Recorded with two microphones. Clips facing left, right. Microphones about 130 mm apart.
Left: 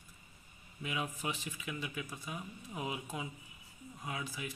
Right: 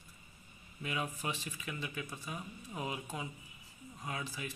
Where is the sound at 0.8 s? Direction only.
10° left (ahead or behind).